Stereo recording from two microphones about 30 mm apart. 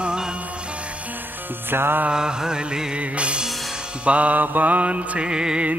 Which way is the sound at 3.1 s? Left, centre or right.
Right.